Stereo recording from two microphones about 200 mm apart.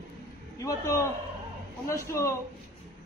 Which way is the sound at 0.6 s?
15° left (ahead or behind).